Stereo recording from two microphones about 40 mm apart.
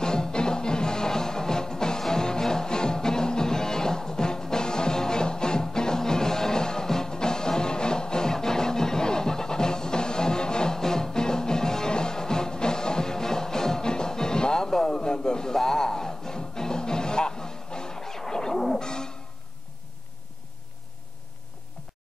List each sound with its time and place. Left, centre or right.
0.0 s music: centre